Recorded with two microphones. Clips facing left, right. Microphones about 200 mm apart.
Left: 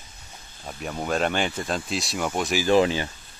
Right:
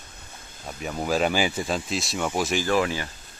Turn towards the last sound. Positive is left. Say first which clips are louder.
# left 4 dB
turn(degrees=25)  # may be behind; listen again after turning